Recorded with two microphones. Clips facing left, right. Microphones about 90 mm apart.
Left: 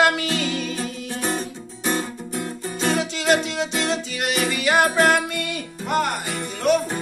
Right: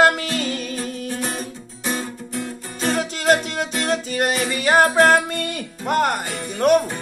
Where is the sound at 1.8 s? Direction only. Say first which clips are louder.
Left 2 dB; centre (ahead or behind).